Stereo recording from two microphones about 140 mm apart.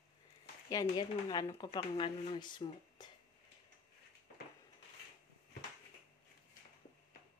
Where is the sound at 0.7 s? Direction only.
30° left (ahead or behind).